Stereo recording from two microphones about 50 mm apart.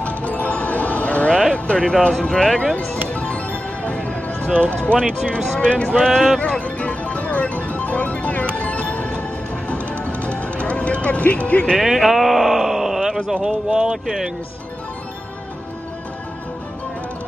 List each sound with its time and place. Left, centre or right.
0.0 s music: left
1.5 s a sound: centre
2.0 s speech: centre
2.7 s music: centre
4.6 s speech: left
5.9 s speech: centre
6.6 s music: left
11.8 s speech: centre